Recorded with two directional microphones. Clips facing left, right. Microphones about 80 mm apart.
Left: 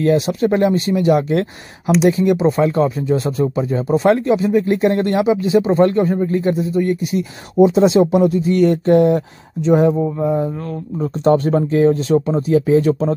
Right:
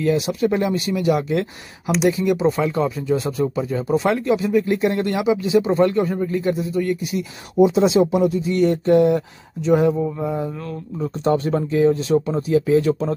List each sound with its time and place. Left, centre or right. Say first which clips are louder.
0.0 s speech: left 4 dB; left
9.6 s speech: left 3 dB; left